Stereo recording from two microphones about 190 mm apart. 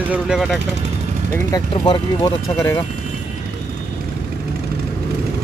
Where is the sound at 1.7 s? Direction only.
25° left (ahead or behind).